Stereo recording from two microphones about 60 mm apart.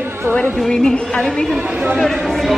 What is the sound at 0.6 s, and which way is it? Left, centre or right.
Speech, centre.